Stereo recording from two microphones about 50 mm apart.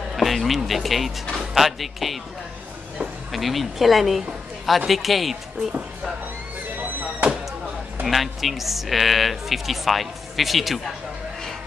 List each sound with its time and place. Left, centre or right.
0.1 s speech: centre
3.3 s speech: centre
6.8 s music: right
8.1 s speech: centre